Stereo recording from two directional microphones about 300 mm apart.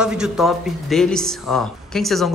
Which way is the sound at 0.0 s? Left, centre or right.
Centre.